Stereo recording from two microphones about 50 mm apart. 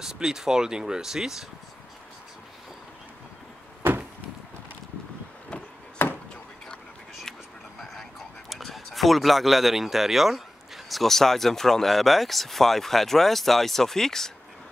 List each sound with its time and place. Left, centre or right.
0.0 s speech: centre
6.0 s chop: left
7.8 s a sound: centre
10.9 s speech: centre